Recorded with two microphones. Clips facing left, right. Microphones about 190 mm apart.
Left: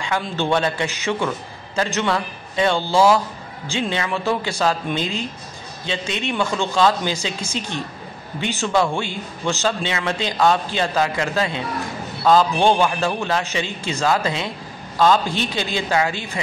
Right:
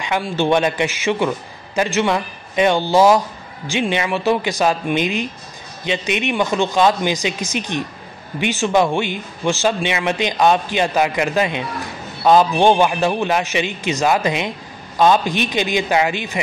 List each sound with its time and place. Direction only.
0.0 s a man's voice: 15° right (ahead or behind)